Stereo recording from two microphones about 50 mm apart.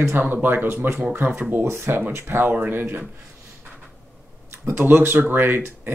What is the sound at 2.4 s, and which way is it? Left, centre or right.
Speech, right.